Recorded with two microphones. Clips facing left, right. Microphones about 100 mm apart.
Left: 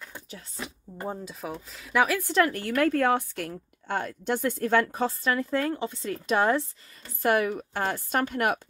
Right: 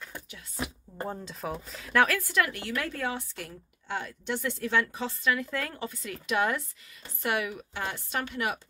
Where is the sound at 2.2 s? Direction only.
35° left (ahead or behind).